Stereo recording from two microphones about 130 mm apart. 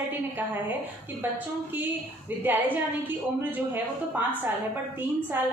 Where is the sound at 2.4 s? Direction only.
15° right (ahead or behind).